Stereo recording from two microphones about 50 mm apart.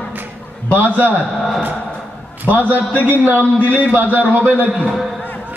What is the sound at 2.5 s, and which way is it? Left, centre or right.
A man's voice, left.